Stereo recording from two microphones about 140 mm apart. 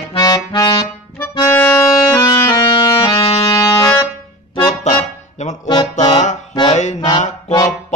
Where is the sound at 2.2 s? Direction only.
30° left (ahead or behind).